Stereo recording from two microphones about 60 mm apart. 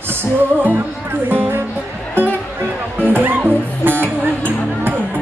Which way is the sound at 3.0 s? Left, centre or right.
Right.